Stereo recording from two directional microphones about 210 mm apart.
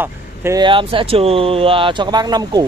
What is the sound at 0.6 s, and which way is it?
Speech, 25° right (ahead or behind).